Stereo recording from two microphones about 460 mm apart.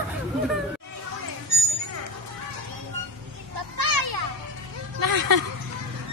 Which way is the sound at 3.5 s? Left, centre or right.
Right.